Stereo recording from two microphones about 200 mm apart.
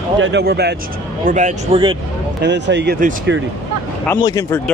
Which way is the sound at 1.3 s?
40° right (ahead or behind).